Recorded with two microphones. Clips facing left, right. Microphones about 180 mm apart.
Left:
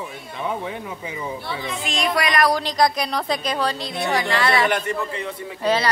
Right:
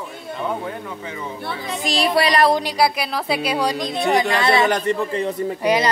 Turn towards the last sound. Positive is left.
turn(degrees=-15)  # may be behind; listen again after turning